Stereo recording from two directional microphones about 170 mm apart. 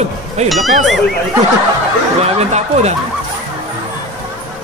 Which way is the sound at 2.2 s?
40° right (ahead or behind).